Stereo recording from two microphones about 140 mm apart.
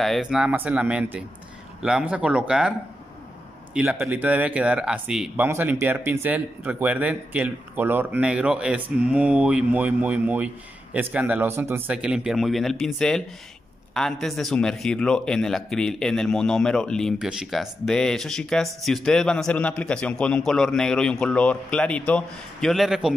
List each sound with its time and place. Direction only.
0.0 s speech: centre (ahead or behind)
3.7 s a man's voice: 5° right (ahead or behind)